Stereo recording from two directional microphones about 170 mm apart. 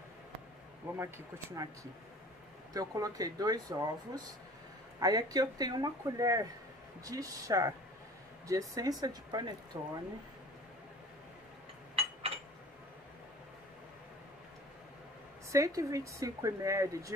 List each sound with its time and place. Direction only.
0.9 s speech: 15° right (ahead or behind)
2.7 s speech: 20° right (ahead or behind)
11.9 s a sound: 35° right (ahead or behind)
15.5 s speech: 20° right (ahead or behind)